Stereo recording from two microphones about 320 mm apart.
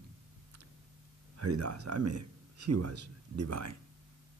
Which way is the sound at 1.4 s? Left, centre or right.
Right.